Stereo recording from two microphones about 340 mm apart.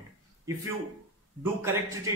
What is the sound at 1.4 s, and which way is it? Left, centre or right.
Speech, centre.